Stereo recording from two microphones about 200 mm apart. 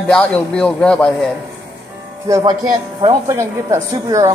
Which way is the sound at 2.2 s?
20° right (ahead or behind).